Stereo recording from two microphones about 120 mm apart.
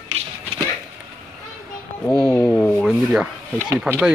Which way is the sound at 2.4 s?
10° left (ahead or behind).